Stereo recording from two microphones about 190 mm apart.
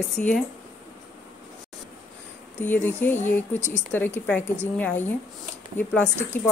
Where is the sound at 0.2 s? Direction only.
45° left (ahead or behind).